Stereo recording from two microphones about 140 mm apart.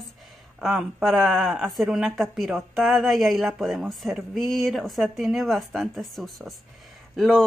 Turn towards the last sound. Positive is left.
turn(degrees=5)  # may be behind; listen again after turning